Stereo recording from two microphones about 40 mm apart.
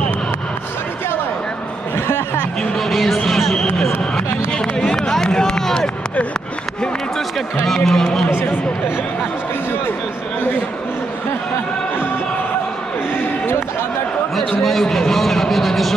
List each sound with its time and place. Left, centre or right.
2.0 s a sound: left
2.7 s music: centre
3.3 s a sound: centre
3.5 s basketball bounce: centre
4.5 s run: left
7.6 s a man's voice: centre
14.6 s a man's voice: centre